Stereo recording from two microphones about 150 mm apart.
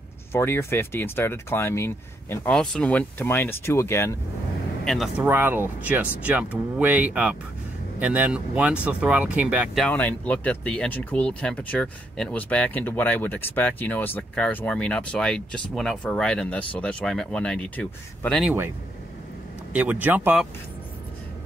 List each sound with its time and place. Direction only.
0.3 s speech: 15° left (ahead or behind)
2.5 s speech: 5° left (ahead or behind)
4.8 s speech: centre (ahead or behind)
5.2 s speech: 10° right (ahead or behind)
9.8 s speech: 10° left (ahead or behind)
19.7 s speech: 10° right (ahead or behind)